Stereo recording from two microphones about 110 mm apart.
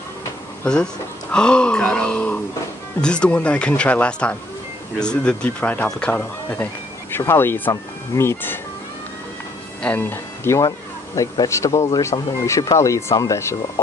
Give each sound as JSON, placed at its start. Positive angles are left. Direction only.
{"t": 1.3, "sound": "speech", "side_deg": 10}
{"t": 6.5, "sound": "speech", "side_deg": 20}
{"t": 9.8, "sound": "speech", "side_deg": 15}